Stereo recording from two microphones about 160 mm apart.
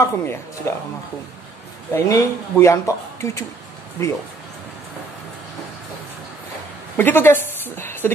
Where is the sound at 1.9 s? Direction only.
20° left (ahead or behind).